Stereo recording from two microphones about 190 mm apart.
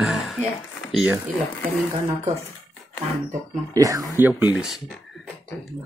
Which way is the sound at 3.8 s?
15° right (ahead or behind).